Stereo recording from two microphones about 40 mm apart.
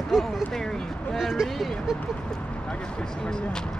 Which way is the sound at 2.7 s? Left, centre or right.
Left.